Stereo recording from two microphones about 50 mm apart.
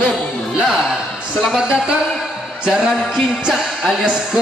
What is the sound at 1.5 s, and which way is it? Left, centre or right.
Speech, centre.